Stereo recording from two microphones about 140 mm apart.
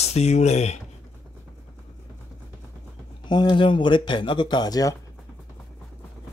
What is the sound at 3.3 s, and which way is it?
Speech, 35° left (ahead or behind).